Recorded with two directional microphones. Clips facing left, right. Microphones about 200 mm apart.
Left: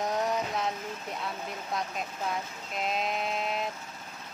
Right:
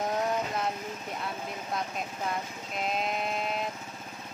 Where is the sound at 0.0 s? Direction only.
Centre (ahead or behind).